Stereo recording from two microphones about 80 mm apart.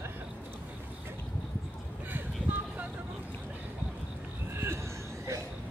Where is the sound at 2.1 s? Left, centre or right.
Right.